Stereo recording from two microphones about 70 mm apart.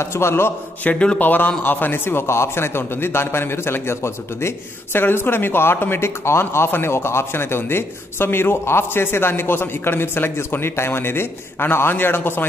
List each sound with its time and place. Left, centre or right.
0.0 s speech: left
0.8 s a man's voice: centre